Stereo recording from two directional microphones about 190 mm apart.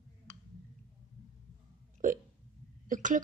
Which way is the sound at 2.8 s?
45° right (ahead or behind).